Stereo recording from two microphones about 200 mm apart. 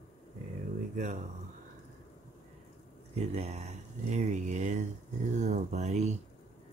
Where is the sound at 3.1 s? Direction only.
35° right (ahead or behind).